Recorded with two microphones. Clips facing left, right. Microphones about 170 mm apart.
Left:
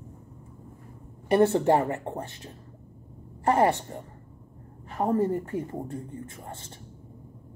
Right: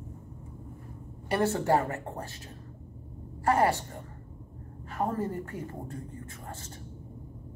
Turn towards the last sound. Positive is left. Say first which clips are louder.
# left 6 dB
turn(degrees=30)  # may be behind; listen again after turning